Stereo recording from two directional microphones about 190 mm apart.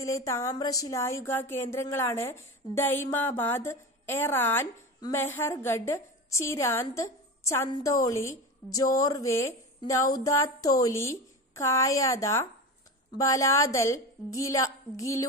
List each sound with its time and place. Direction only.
0.0 s speech: 15° left (ahead or behind)